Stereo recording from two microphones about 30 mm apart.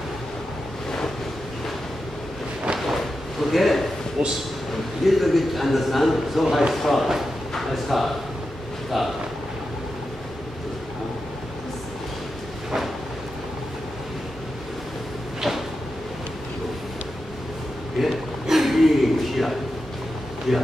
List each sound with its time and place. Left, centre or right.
2.8 s slam: centre
4.2 s a man's voice: centre
5.0 s a man's voice: centre
15.5 s drawer open or close: centre
17.9 s a sound: centre